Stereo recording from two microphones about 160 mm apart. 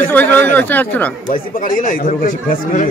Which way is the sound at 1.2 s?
60° left (ahead or behind).